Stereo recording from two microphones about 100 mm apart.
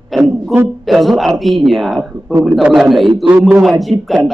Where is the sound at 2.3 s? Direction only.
35° right (ahead or behind).